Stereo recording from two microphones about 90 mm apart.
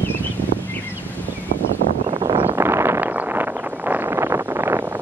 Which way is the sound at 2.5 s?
30° right (ahead or behind).